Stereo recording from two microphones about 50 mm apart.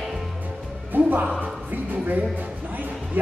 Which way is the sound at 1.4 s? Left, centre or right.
Right.